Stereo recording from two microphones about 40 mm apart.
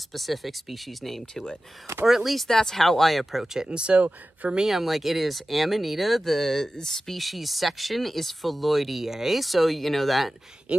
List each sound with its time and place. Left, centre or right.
0.1 s speech: centre
2.0 s speech: centre
2.3 s speech: centre
3.6 s speech: right
4.6 s speech: centre
7.2 s speech: centre
10.7 s speech: right